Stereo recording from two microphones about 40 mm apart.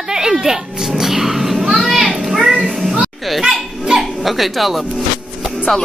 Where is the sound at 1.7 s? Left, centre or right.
Centre.